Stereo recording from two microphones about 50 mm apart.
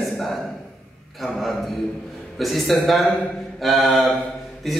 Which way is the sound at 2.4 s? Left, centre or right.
Centre.